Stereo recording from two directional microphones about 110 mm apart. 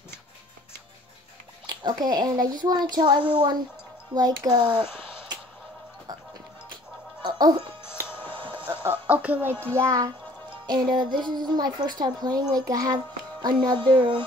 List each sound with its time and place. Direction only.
1.7 s a woman's voice: 40° right (ahead or behind)
7.2 s music: 40° right (ahead or behind)
8.1 s a sound: 20° left (ahead or behind)
8.4 s music: 50° right (ahead or behind)
8.8 s a child's voice: 15° right (ahead or behind); by 10.1 s 30° right (ahead or behind)
10.7 s a woman's voice: 40° right (ahead or behind)